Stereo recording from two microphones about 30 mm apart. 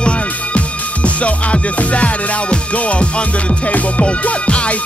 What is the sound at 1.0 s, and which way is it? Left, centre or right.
Music, left.